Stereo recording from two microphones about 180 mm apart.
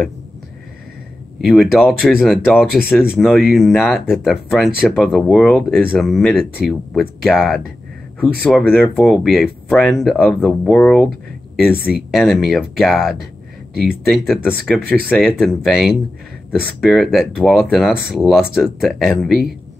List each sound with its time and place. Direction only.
1.4 s speech: centre (ahead or behind)